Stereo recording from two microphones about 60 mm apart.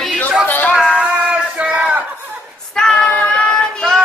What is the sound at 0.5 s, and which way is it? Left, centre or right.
Music, left.